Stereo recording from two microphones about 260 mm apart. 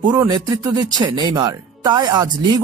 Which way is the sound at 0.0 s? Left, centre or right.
Centre.